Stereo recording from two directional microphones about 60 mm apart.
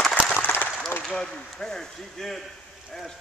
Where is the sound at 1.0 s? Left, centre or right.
Centre.